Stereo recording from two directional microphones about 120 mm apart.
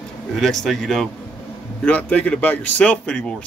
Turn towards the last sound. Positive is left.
turn(degrees=10)  # may be behind; listen again after turning